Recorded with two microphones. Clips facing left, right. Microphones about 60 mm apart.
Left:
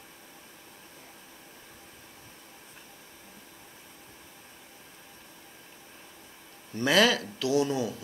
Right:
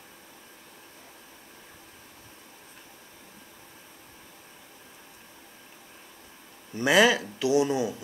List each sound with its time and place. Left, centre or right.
6.7 s speech: centre